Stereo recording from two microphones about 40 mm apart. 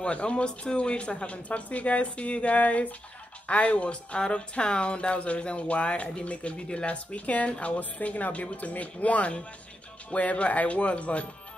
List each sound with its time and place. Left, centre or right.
0.0 s speech: left